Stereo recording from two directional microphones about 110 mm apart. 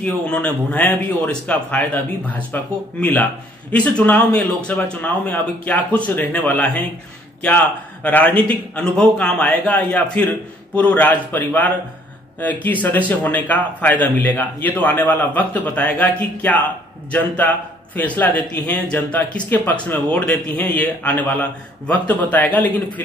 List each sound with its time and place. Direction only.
0.0 s speech: 15° left (ahead or behind)
8.0 s speech: 15° left (ahead or behind)